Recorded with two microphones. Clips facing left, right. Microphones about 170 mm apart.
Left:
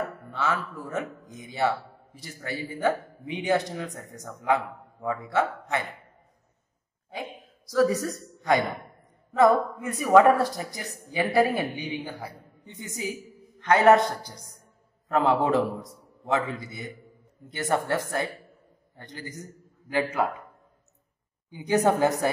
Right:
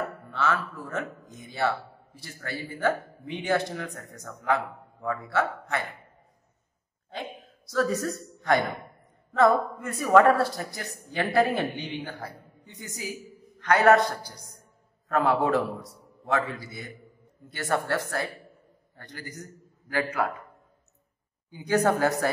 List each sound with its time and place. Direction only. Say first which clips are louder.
0.3 s a man's voice: right 2 dB; 15° left (ahead or behind)
7.7 s a man's voice: left 3 dB; 15° left (ahead or behind)
9.3 s a man's voice: left 1 dB; 15° left (ahead or behind)
12.6 s a man's voice: left 4 dB; 25° left (ahead or behind)
21.5 s a man's voice: left 1 dB; 20° left (ahead or behind)